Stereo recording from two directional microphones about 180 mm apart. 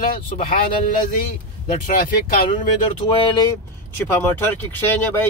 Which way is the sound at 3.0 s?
30° left (ahead or behind).